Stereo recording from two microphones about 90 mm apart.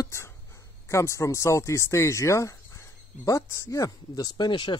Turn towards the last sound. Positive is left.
turn(degrees=60)  # may be behind; listen again after turning